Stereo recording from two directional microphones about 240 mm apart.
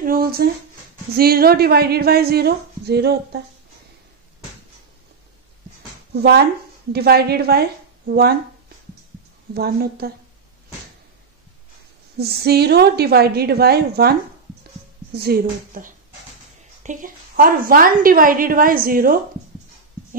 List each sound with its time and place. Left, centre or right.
0.0 s a sound: right
1.1 s a woman's voice: right
6.9 s a woman's voice: right
9.5 s a woman's voice: right
12.2 s a woman's voice: right
15.1 s a woman's voice: right